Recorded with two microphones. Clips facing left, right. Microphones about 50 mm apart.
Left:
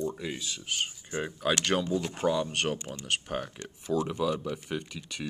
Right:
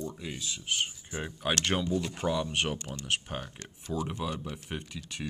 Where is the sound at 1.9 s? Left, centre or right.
Left.